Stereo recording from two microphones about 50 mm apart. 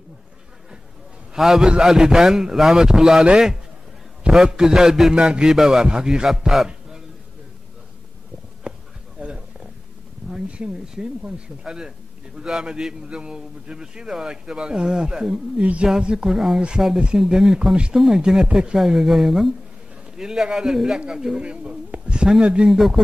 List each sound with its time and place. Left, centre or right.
1.3 s a man's voice: centre
8.6 s bee: centre
9.2 s a sound: right
10.7 s a man's voice: centre
12.6 s a man's voice: centre
16.3 s a man's voice: centre
18.8 s a man's voice: centre
21.9 s a sound: right
22.4 s speech: centre
22.7 s speech: centre